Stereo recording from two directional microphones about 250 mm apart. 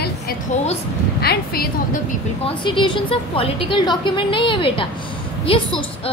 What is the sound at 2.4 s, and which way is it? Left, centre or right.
A woman's voice, centre.